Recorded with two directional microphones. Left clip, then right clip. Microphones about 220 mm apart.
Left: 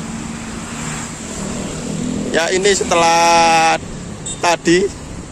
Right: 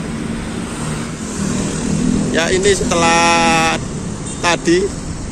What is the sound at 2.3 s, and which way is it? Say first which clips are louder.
Speech: left 1 dB; 25° left (ahead or behind).